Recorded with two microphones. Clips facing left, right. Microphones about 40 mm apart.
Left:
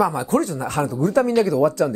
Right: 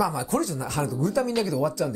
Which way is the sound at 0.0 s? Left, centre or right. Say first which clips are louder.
Left 5 dB; left.